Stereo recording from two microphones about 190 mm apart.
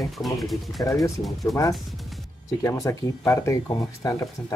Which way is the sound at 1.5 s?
Centre (ahead or behind).